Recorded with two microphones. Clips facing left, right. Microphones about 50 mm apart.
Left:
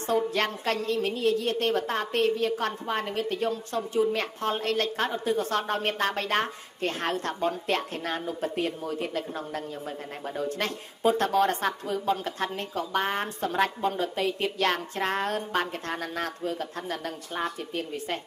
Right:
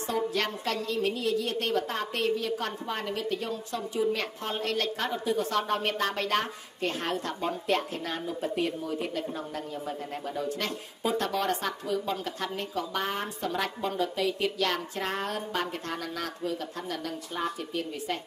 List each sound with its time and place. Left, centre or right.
0.3 s a woman's voice: left